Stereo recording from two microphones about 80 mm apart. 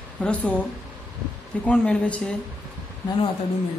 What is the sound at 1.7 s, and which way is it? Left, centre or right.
Speech, centre.